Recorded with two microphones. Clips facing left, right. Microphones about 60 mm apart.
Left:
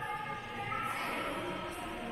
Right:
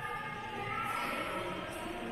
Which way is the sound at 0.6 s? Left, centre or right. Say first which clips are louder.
Right 1 dB; centre.